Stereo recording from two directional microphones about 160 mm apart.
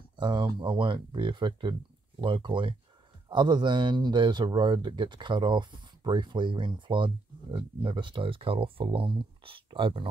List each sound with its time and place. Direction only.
0.2 s speech: 30° right (ahead or behind)